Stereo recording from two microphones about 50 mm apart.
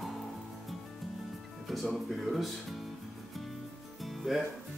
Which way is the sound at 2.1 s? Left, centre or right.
Centre.